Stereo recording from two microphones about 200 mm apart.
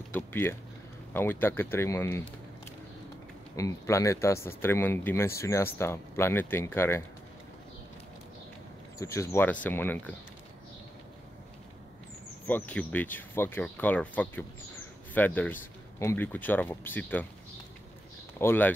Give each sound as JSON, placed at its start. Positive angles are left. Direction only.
{"t": 0.1, "sound": "speech", "side_deg": 10}
{"t": 3.5, "sound": "speech", "side_deg": 15}
{"t": 8.9, "sound": "speech", "side_deg": 15}
{"t": 12.4, "sound": "speech", "side_deg": 10}
{"t": 18.4, "sound": "speech", "side_deg": 10}